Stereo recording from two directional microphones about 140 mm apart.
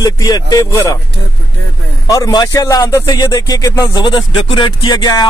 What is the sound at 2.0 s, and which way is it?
A man's voice, 25° left (ahead or behind).